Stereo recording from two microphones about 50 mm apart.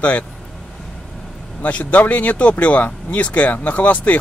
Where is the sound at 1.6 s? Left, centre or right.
Left.